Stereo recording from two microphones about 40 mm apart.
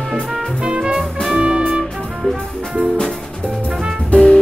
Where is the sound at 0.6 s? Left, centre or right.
Right.